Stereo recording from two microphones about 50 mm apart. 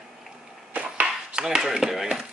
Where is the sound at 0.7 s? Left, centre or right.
Right.